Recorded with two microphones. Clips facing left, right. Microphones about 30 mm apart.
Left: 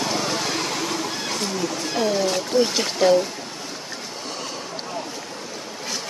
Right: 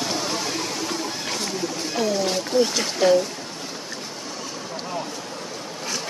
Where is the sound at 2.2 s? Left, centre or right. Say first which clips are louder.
Right 1 dB; centre.